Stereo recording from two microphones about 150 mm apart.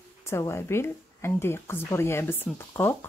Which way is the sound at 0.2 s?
20° left (ahead or behind).